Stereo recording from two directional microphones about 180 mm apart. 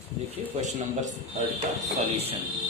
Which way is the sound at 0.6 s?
45° right (ahead or behind).